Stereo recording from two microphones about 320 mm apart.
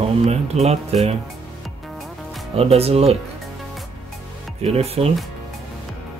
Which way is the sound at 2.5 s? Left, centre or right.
Centre.